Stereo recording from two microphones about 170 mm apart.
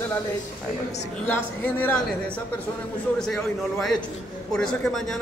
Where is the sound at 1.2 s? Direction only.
10° left (ahead or behind).